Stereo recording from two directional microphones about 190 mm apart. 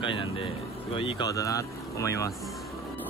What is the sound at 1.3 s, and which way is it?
Speech, 15° left (ahead or behind).